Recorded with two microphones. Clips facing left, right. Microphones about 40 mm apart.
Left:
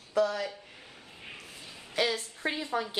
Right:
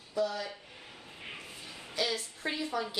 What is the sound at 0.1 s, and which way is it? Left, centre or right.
Speech, left.